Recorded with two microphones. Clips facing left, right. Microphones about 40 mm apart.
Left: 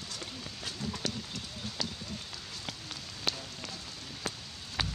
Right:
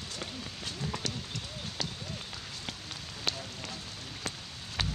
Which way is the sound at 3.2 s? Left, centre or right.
Centre.